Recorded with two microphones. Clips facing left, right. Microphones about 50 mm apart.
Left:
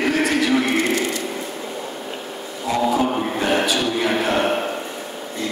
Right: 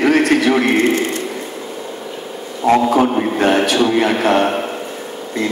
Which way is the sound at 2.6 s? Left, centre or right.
Right.